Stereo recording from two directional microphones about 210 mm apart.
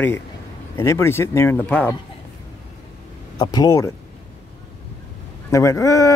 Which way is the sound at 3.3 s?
20° left (ahead or behind).